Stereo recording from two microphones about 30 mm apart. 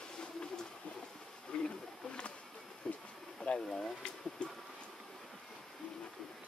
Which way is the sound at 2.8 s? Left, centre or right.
Left.